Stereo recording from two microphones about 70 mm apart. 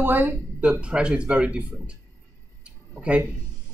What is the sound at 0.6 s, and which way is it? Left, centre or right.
Speech, centre.